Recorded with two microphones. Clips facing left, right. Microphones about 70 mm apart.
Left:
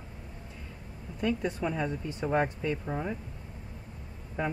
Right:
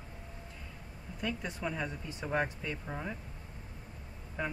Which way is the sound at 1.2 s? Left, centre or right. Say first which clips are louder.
Left 7 dB; centre.